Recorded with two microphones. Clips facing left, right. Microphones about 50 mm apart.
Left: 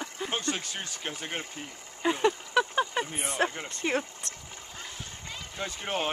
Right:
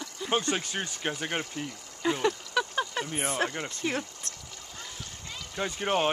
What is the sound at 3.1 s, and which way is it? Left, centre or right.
Speech, centre.